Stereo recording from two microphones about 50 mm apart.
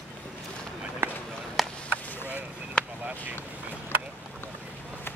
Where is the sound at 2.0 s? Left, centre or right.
Left.